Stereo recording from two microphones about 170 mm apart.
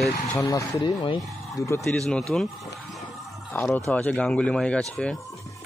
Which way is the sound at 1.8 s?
5° left (ahead or behind).